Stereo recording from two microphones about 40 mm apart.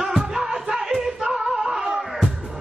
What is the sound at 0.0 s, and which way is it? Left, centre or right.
Music, centre.